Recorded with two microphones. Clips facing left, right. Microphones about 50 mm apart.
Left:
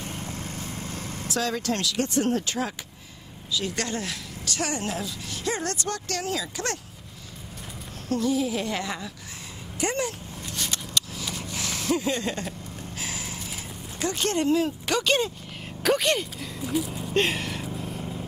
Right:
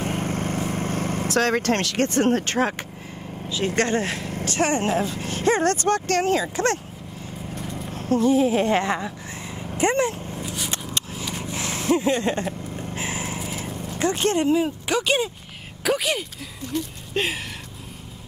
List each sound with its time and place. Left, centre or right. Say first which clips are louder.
0.0 s vehicle: right 9 dB; right
3.5 s speech: right 7 dB; right
8.1 s speech: right 6 dB; right
10.4 s a sound: right 1 dB; centre
10.7 s a sound: right 1 dB; right
13.4 s speech: right 7 dB; right; by 16.3 s centre
16.6 s speech: left 1 dB; centre
17.1 s speech: left 1 dB; centre